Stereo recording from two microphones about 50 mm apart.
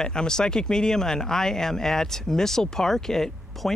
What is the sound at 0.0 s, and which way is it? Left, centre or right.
Speech, centre.